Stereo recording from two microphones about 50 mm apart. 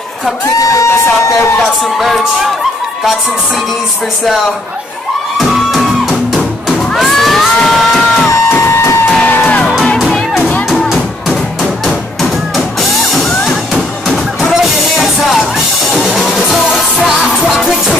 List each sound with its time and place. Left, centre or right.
0.7 s speech: left
2.0 s speech: centre
5.5 s music: centre
8.3 s music: left
9.2 s music: left
11.8 s music: centre
14.0 s a sound: centre
14.5 s music: centre